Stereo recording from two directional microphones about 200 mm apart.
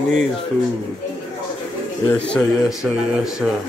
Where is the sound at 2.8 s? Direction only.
5° right (ahead or behind).